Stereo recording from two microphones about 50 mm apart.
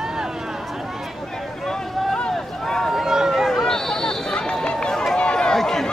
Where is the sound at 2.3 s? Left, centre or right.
Centre.